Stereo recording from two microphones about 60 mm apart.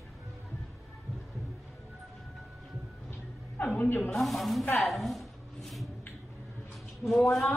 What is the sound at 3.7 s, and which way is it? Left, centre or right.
Speech, left.